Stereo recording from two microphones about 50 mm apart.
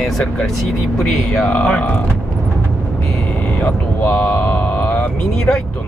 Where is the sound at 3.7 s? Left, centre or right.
Left.